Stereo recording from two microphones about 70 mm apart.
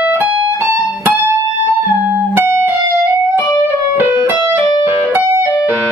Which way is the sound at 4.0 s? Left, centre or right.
Right.